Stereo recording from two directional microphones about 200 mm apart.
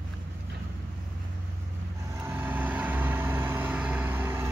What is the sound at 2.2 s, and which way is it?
Vehicle, 10° right (ahead or behind).